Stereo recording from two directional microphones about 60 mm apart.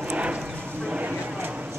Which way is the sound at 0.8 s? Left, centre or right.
Right.